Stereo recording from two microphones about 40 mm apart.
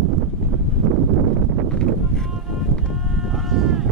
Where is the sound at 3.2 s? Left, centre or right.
Centre.